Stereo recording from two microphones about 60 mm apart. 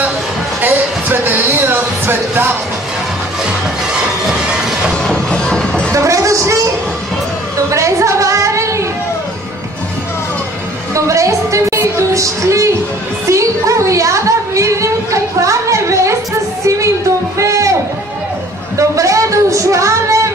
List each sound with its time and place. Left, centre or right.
0.6 s music: right
4.3 s train: centre
5.0 s music: centre
5.9 s music: right
7.7 s music: right
11.0 s music: right
13.3 s a sound: right
16.6 s music: right
17.4 s a sound: right
18.8 s a sound: right